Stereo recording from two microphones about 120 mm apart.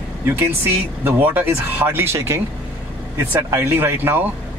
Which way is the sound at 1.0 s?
15° right (ahead or behind).